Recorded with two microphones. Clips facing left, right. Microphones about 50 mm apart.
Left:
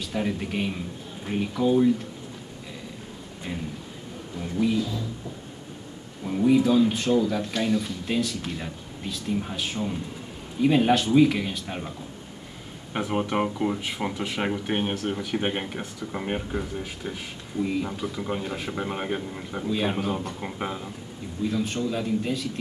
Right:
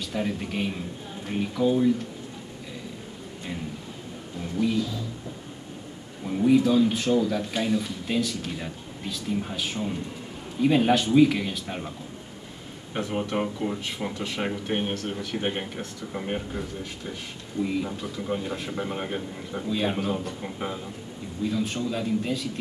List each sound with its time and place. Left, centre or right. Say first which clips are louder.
0.0 s speech: left 1 dB; centre
6.2 s speech: even; centre
12.9 s speech: left 2 dB; centre
21.5 s speech: left 1 dB; centre